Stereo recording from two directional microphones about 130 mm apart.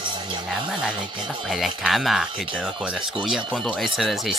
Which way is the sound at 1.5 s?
Centre (ahead or behind).